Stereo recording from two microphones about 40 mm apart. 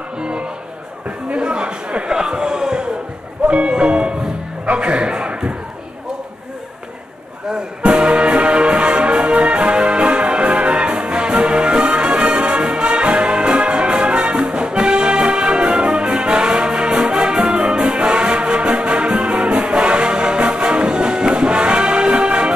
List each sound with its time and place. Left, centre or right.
0.2 s music: right
1.3 s a man's voice: right
7.5 s music: right